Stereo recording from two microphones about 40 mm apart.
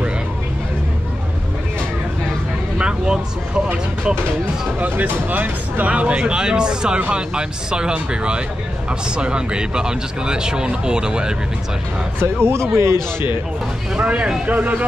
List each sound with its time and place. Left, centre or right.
2.8 s a sound: right
4.7 s speech: right
12.2 s speech: right
13.9 s speech: right
14.4 s speech: right